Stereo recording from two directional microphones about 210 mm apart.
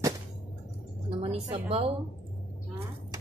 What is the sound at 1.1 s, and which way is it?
Speech, 25° right (ahead or behind).